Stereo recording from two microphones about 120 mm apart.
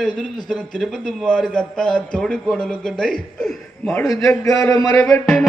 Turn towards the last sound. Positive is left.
turn(degrees=25)  # may be behind; listen again after turning